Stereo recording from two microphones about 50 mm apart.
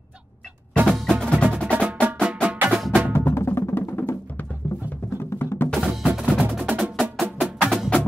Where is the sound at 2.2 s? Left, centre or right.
Right.